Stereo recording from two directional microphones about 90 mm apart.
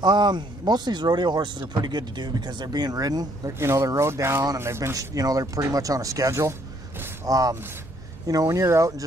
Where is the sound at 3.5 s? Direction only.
30° right (ahead or behind).